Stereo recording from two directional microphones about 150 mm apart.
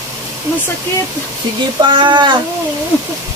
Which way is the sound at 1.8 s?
30° right (ahead or behind).